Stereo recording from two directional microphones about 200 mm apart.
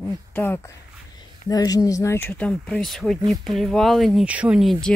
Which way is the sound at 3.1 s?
15° right (ahead or behind).